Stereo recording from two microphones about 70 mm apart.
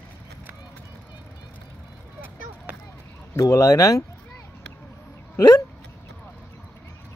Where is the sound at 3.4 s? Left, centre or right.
Left.